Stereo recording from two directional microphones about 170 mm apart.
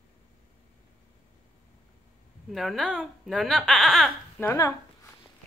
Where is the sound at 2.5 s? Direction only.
Centre (ahead or behind).